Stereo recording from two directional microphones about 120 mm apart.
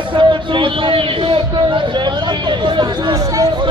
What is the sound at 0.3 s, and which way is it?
A man's voice, 45° right (ahead or behind).